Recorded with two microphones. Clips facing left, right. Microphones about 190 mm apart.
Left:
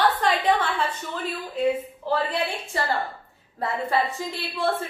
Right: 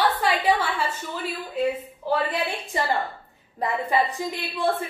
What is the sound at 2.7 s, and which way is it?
A woman's voice, 15° right (ahead or behind).